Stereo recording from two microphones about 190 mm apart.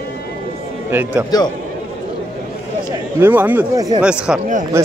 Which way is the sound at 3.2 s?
10° right (ahead or behind).